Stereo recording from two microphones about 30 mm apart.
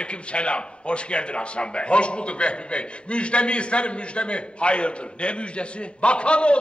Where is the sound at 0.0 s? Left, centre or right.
Left.